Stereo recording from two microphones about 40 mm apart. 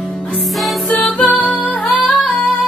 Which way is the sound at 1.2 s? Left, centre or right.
Left.